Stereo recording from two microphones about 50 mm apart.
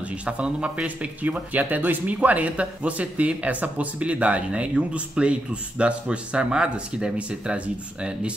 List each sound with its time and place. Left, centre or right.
0.0 s speech: right